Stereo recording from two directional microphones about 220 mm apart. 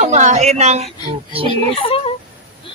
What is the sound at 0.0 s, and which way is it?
Speech, 30° right (ahead or behind).